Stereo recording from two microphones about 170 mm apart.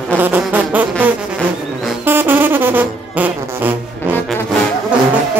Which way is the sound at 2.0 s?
10° right (ahead or behind).